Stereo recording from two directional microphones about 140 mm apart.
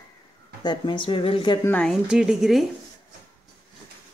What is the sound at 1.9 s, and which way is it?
Speech, 5° right (ahead or behind).